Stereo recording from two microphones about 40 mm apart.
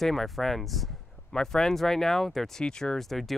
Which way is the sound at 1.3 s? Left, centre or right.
Centre.